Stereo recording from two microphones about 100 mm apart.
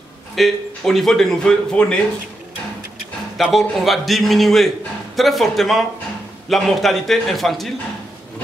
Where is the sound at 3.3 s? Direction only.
Centre (ahead or behind).